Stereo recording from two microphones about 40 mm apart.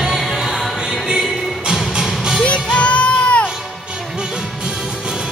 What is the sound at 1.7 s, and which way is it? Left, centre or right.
Music, centre.